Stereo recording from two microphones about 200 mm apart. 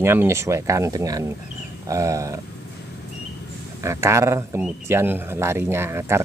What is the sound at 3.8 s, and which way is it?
Speech, 15° right (ahead or behind).